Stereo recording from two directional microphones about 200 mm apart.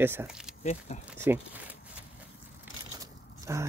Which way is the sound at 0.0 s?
10° right (ahead or behind).